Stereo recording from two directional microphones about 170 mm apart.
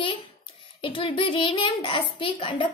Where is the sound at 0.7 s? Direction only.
30° left (ahead or behind).